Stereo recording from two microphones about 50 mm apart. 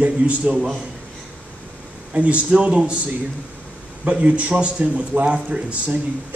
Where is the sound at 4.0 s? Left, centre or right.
Right.